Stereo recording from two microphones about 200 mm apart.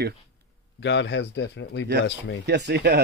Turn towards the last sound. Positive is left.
turn(degrees=-55)  # may be behind; listen again after turning